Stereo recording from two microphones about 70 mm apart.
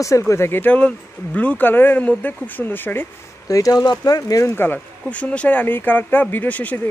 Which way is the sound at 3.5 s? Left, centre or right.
Left.